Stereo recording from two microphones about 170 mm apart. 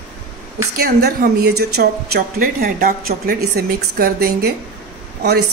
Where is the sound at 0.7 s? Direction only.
65° right (ahead or behind).